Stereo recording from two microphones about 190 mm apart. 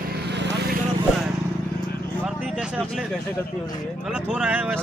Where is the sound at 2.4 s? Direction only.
5° right (ahead or behind).